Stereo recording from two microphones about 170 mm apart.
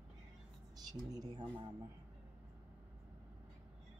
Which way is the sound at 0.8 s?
20° right (ahead or behind).